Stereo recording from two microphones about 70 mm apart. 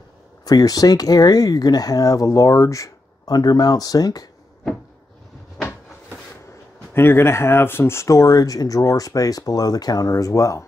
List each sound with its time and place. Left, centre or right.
0.5 s speech: left
6.9 s speech: left